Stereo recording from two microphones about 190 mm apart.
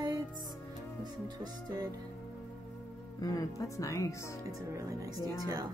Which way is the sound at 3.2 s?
20° left (ahead or behind).